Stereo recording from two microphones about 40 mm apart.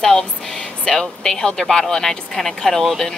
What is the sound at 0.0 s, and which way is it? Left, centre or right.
A child's voice, centre.